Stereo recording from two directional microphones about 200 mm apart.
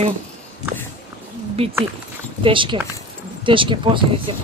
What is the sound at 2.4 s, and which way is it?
Speech, 25° right (ahead or behind).